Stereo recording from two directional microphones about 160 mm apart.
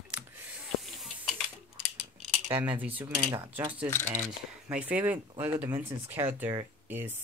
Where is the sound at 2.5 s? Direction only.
10° right (ahead or behind).